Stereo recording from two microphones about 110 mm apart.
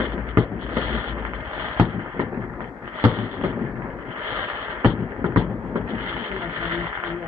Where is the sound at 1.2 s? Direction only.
30° right (ahead or behind).